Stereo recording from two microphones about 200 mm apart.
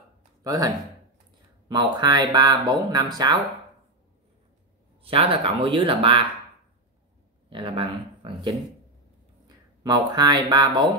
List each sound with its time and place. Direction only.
0.4 s speech: 20° right (ahead or behind)
1.7 s speech: 20° right (ahead or behind)
5.0 s speech: 25° right (ahead or behind)
7.4 s speech: 25° right (ahead or behind)
9.8 s speech: 20° right (ahead or behind)